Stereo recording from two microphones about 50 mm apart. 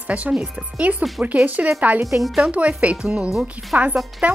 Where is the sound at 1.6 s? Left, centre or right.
Right.